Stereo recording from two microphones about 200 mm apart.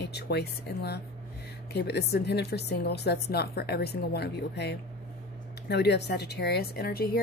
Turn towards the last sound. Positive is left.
turn(degrees=50)  # may be behind; listen again after turning